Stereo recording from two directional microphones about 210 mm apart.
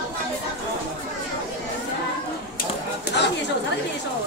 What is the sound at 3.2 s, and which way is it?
Chatter, 55° left (ahead or behind).